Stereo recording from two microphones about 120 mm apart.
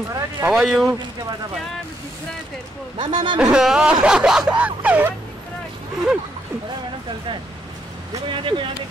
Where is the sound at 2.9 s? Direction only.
40° right (ahead or behind).